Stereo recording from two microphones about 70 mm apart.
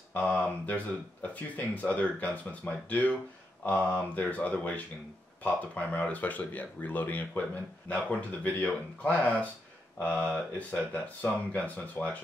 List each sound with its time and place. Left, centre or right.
0.1 s speech: centre